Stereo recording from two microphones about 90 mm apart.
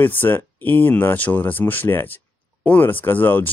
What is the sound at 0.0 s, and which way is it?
Speech, 20° left (ahead or behind).